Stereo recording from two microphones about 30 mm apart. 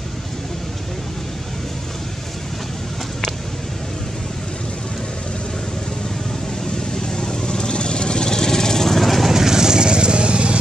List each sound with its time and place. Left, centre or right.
7.0 s vehicle: left; by 9.3 s centre
9.3 s vehicle: centre; by 10.6 s right